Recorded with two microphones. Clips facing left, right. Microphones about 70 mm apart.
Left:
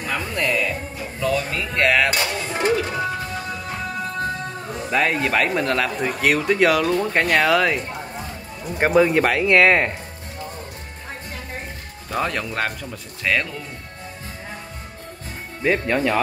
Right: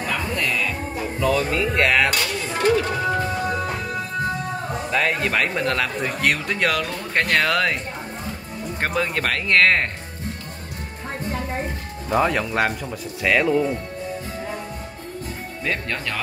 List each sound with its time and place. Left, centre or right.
0.1 s music: centre
1.2 s speech: centre
2.1 s music: centre
2.7 s speech: centre
4.9 s speech: centre
8.7 s speech: centre
12.1 s speech: centre
15.6 s speech: centre